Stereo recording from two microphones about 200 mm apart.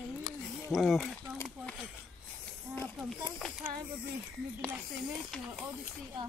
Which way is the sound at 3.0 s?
Centre (ahead or behind).